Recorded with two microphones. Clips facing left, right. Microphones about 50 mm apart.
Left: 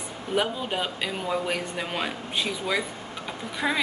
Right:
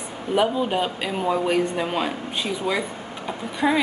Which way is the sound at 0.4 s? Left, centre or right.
Centre.